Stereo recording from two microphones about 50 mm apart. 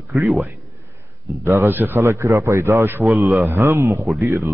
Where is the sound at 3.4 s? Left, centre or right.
Right.